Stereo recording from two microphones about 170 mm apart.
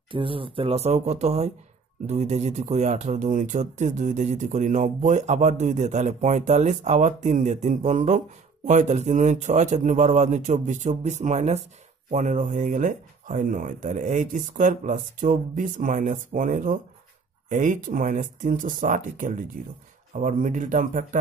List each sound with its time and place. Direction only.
0.1 s speech: 30° right (ahead or behind); by 21.2 s 50° right (ahead or behind)